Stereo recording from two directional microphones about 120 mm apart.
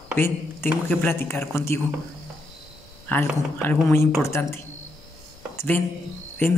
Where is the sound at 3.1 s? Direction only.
15° left (ahead or behind).